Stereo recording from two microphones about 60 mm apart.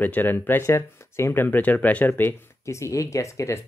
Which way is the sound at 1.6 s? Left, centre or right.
Left.